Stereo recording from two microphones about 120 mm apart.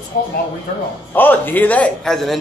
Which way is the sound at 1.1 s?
15° left (ahead or behind).